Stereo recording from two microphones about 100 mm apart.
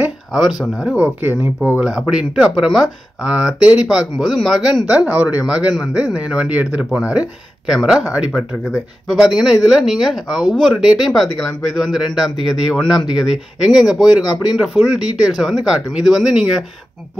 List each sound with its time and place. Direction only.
0.3 s speech: 5° right (ahead or behind)
12.9 s speech: 45° left (ahead or behind)
13.7 s speech: 5° right (ahead or behind)